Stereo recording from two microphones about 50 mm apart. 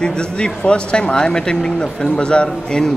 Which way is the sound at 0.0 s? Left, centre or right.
Centre.